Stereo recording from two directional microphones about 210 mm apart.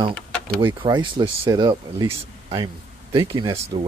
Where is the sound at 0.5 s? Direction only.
20° right (ahead or behind).